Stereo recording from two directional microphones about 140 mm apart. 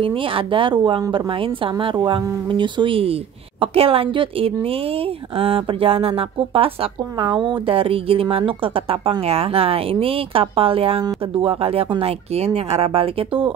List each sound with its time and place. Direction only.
0.0 s a woman's voice: 40° right (ahead or behind)